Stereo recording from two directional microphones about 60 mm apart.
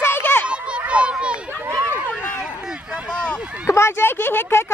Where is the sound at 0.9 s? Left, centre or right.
Centre.